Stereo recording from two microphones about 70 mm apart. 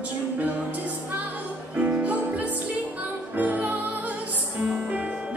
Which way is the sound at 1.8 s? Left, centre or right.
Right.